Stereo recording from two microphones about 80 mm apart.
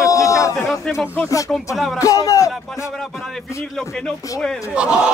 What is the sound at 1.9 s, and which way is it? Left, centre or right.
Speech, left.